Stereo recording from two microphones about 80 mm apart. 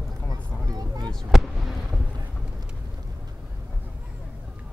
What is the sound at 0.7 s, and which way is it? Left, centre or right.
Vehicle, right.